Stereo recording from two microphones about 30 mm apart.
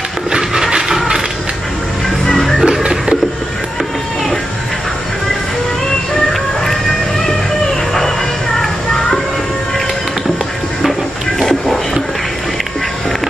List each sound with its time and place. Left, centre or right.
0.4 s a sound: centre
2.3 s music: centre
2.6 s music: right
11.4 s music: centre